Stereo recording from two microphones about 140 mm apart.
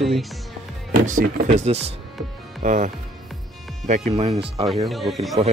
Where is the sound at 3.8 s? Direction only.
60° right (ahead or behind).